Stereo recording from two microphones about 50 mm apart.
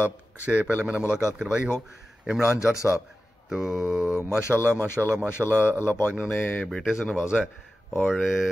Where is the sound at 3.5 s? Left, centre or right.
Centre.